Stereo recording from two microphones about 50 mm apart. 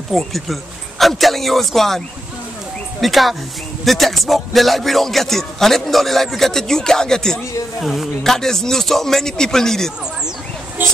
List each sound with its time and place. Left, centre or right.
0.1 s speech: centre
7.8 s speech: centre
8.2 s speech: centre
10.8 s a sound: right